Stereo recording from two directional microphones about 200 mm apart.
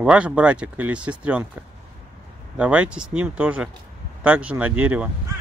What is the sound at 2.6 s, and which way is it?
Speech, 5° right (ahead or behind).